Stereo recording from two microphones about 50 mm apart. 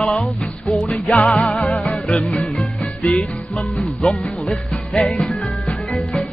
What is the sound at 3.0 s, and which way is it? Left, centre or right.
Music, centre.